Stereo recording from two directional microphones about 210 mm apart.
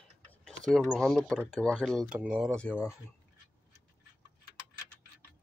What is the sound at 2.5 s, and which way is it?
Speech, 10° left (ahead or behind).